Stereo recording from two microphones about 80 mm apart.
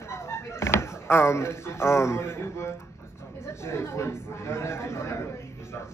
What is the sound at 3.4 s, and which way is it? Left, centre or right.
Chatter, left.